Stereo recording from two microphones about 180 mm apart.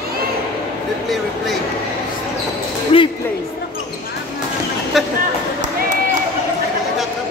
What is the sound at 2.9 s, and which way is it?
Speech, 35° left (ahead or behind).